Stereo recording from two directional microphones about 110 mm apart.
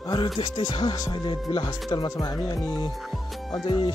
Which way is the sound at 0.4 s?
45° left (ahead or behind).